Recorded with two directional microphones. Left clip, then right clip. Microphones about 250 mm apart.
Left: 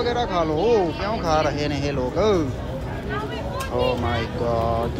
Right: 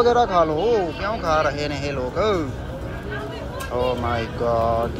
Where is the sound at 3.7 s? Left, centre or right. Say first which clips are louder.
Right 1 dB; centre.